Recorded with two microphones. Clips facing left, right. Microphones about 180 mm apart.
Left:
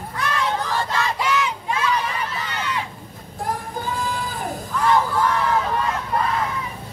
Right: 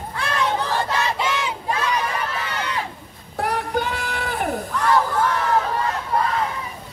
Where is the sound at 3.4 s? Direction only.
75° right (ahead or behind).